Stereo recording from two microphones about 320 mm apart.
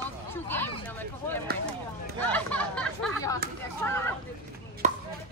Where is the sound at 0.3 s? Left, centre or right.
Centre.